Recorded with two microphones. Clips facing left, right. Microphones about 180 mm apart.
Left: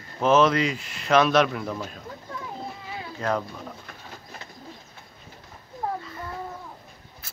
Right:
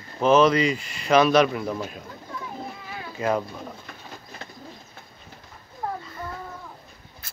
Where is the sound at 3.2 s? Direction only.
5° right (ahead or behind).